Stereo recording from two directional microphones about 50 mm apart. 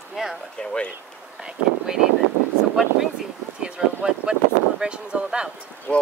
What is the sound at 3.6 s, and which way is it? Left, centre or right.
Speech, centre.